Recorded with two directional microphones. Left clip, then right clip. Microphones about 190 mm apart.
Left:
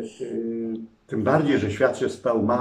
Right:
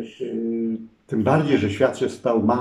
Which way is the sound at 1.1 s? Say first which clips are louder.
Right 1 dB; 5° right (ahead or behind).